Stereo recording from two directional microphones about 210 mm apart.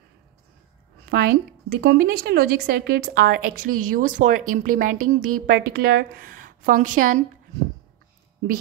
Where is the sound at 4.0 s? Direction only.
40° right (ahead or behind).